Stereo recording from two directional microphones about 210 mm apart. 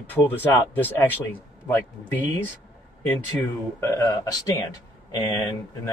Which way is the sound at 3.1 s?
10° left (ahead or behind).